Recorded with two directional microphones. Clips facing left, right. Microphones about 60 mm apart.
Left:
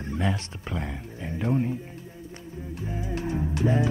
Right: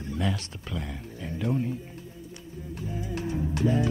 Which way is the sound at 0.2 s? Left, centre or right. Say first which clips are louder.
Left 1 dB; left.